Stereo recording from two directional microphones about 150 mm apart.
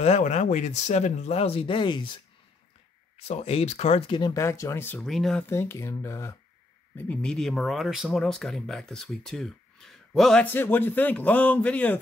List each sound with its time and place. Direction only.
0.0 s speech: 50° left (ahead or behind); by 2.1 s 30° left (ahead or behind)
3.2 s speech: 45° left (ahead or behind)
4.2 s speech: 20° left (ahead or behind)
5.0 s speech: centre (ahead or behind)
5.5 s speech: 15° left (ahead or behind)
7.0 s speech: 10° left (ahead or behind)
10.4 s speech: 15° left (ahead or behind)